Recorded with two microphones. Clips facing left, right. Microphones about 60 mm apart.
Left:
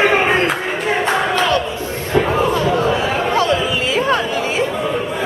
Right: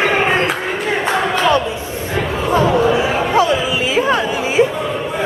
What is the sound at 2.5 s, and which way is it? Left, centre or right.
Chatter, right.